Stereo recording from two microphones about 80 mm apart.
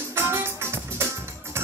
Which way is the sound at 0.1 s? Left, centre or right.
Right.